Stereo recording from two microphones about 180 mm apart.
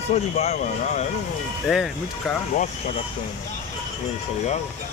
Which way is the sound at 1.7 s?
Centre (ahead or behind).